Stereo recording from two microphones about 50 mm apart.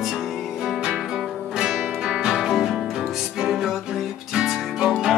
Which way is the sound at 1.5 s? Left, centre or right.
Centre.